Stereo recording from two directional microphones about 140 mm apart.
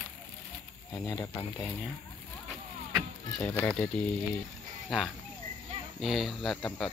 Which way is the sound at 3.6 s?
10° left (ahead or behind).